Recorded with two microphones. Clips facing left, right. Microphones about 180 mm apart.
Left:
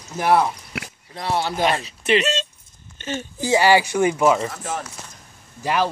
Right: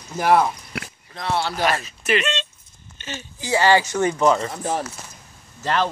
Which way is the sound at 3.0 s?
45° left (ahead or behind).